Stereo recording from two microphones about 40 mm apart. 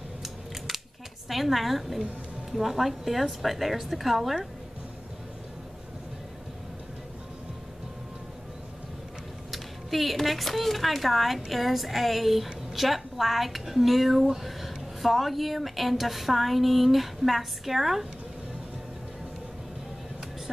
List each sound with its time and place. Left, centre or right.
1.3 s speech: centre
9.5 s speech: centre